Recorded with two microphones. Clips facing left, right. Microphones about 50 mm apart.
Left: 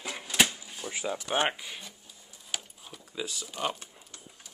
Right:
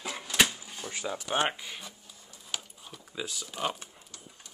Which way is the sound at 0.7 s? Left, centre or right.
Centre.